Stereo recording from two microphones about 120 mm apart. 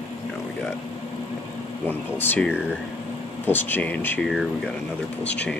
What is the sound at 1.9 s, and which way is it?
Speech, 15° left (ahead or behind).